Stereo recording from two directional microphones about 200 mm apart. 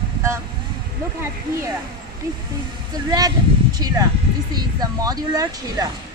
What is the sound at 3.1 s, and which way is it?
Speech, 20° right (ahead or behind).